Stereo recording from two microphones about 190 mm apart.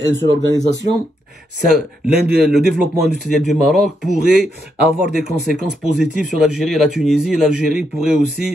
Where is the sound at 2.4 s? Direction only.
Centre (ahead or behind).